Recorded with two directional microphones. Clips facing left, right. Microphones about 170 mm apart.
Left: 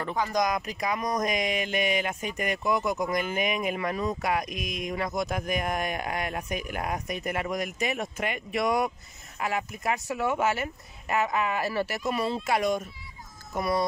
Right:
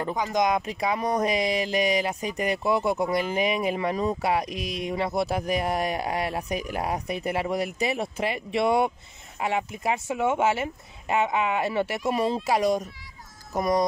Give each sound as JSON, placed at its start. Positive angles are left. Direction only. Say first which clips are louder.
{"t": 0.1, "sound": "speech", "louder": "right 2 dB", "side_deg": -20}